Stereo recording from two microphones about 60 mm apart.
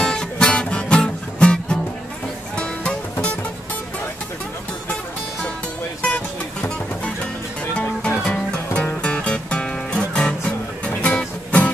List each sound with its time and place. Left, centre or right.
0.0 s music: centre
6.0 s music: left
8.4 s music: centre